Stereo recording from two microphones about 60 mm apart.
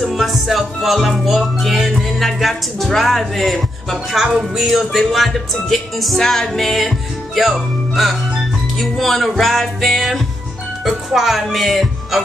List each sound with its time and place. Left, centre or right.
0.1 s speech: centre